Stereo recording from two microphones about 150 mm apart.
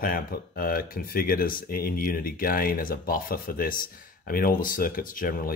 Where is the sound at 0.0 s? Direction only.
75° left (ahead or behind).